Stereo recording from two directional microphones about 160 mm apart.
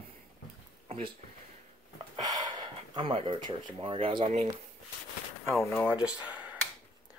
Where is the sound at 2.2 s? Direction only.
25° right (ahead or behind); by 4.5 s 40° right (ahead or behind).